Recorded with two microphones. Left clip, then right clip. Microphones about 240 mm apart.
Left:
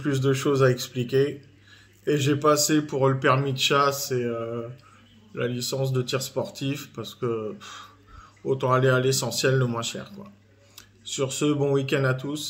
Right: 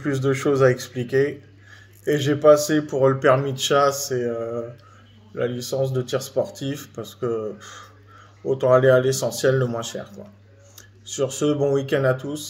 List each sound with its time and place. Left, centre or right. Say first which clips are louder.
0.0 s speech: right 2 dB; centre
2.3 s speech: right 7 dB; centre